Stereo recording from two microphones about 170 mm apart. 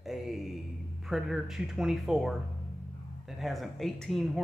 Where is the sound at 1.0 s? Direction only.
Centre (ahead or behind).